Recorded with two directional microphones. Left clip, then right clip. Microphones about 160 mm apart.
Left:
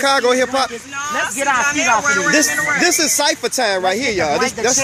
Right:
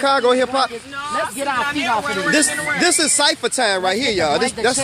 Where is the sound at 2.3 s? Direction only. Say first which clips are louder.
Left 3 dB; 5° right (ahead or behind).